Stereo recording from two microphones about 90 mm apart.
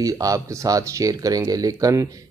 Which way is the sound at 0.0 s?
40° right (ahead or behind).